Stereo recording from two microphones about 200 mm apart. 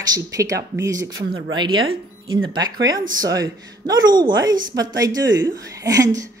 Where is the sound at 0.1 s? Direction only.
15° right (ahead or behind).